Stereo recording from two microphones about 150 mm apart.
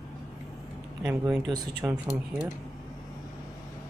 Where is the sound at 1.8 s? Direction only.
15° right (ahead or behind).